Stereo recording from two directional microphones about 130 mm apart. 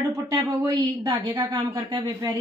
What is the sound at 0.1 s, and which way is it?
A woman's voice, 25° right (ahead or behind).